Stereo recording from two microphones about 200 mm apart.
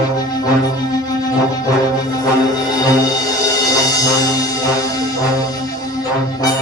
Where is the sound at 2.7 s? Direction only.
20° left (ahead or behind).